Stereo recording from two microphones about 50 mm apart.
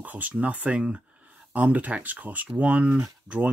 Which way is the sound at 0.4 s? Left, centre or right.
Right.